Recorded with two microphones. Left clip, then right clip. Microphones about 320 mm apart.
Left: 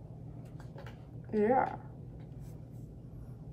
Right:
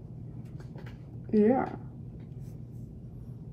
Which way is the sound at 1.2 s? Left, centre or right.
Left.